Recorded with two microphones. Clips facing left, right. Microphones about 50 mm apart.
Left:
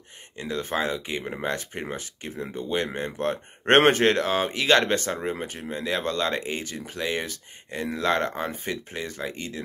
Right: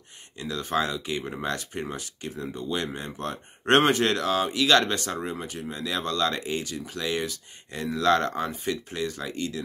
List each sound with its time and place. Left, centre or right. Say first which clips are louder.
0.4 s speech: even; left